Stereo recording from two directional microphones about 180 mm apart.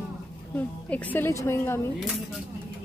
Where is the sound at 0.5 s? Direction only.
10° left (ahead or behind).